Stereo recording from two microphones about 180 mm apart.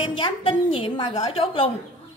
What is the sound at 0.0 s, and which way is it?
A woman's voice, 30° left (ahead or behind).